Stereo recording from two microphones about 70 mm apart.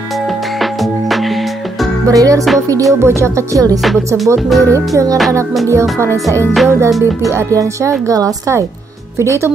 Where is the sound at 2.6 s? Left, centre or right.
Right.